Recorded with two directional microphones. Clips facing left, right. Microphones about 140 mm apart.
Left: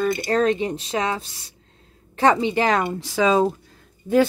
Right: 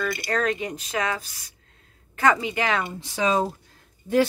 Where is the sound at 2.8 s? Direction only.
75° left (ahead or behind).